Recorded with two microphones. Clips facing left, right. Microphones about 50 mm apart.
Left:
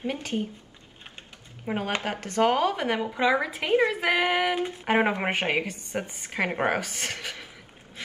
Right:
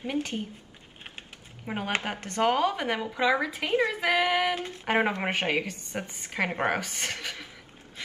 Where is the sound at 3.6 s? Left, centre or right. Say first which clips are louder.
Left 3 dB; left.